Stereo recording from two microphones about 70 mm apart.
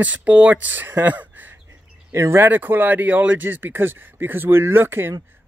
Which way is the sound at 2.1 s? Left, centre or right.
Right.